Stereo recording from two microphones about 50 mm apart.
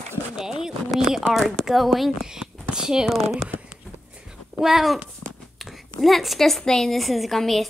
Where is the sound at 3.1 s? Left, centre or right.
Centre.